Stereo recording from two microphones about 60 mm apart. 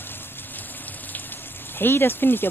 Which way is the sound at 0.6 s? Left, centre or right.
Left.